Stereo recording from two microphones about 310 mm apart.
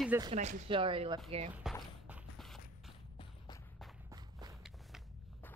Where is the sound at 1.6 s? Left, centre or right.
Centre.